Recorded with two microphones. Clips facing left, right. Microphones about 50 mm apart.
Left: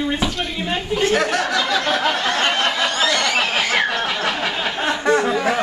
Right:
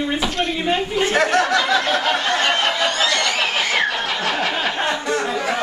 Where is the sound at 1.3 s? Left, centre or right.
Centre.